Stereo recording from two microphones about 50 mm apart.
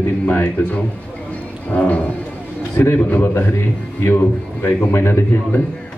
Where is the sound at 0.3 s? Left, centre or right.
Left.